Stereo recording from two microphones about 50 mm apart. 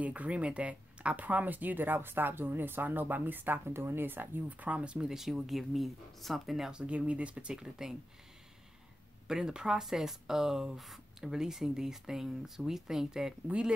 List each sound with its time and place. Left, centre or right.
0.0 s speech: right
5.1 s speech: centre
6.7 s speech: right
9.3 s speech: centre